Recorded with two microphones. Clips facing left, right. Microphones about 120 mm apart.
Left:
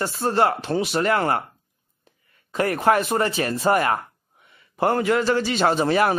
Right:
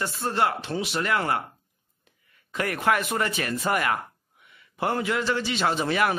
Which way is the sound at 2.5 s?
35° left (ahead or behind).